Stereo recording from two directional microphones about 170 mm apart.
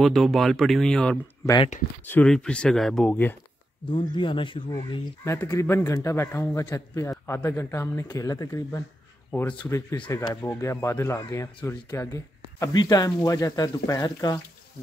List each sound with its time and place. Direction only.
0.0 s speech: centre (ahead or behind)
1.4 s speech: 25° left (ahead or behind)
2.0 s speech: 10° left (ahead or behind)
3.9 s speech: 30° left (ahead or behind)
5.2 s a man's voice: 15° left (ahead or behind)
9.3 s a man's voice: 10° left (ahead or behind)